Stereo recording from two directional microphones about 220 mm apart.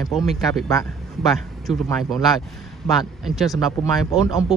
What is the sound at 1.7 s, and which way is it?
Speech, 15° left (ahead or behind).